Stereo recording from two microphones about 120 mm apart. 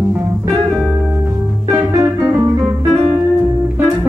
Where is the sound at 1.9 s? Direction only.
25° right (ahead or behind).